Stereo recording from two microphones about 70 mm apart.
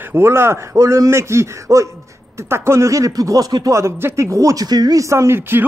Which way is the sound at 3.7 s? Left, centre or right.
Right.